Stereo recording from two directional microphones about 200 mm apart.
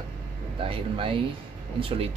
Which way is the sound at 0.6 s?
25° right (ahead or behind).